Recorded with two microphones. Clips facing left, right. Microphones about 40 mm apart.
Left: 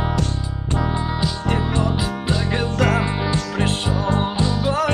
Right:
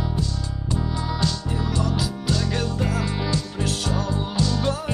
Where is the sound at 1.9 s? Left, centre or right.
Left.